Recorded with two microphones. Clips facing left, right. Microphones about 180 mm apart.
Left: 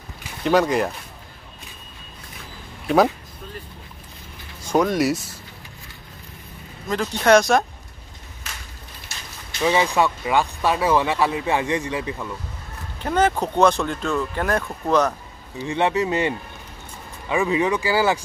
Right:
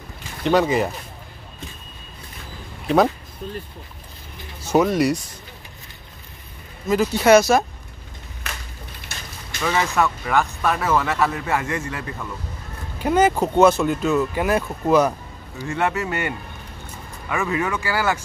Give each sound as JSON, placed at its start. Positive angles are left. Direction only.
{"t": 0.4, "sound": "speech", "side_deg": 0}
{"t": 4.6, "sound": "speech", "side_deg": -5}
{"t": 6.9, "sound": "speech", "side_deg": -5}
{"t": 9.1, "sound": "a sound", "side_deg": -55}
{"t": 9.7, "sound": "speech", "side_deg": 15}
{"t": 13.0, "sound": "speech", "side_deg": -10}
{"t": 15.6, "sound": "speech", "side_deg": 15}